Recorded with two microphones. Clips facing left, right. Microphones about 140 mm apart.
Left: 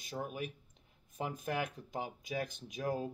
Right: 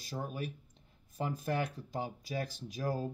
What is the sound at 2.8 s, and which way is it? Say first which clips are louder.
Speech: right 1 dB; 35° right (ahead or behind).